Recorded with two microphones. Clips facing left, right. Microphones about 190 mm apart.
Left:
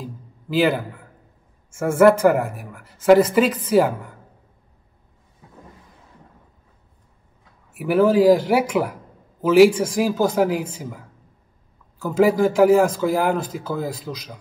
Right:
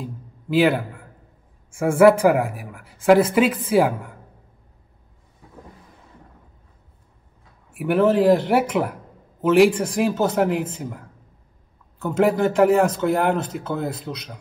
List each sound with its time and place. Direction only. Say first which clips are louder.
0.0 s a sound: right 1 dB; centre (ahead or behind)
1.8 s speech: even; centre (ahead or behind)
7.7 s speech: left 1 dB; centre (ahead or behind)